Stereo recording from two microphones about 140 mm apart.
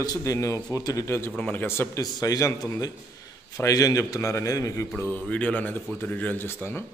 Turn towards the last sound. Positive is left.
turn(degrees=15)  # may be behind; listen again after turning